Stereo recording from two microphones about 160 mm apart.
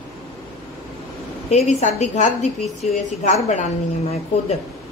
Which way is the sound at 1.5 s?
45° left (ahead or behind).